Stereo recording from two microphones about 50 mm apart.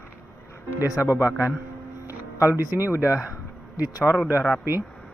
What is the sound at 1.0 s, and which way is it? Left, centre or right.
Speech, left.